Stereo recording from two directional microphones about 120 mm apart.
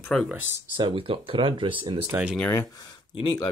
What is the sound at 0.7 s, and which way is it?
Speech, 50° right (ahead or behind).